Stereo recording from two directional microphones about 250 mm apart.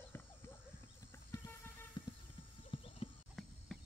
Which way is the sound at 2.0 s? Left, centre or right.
Centre.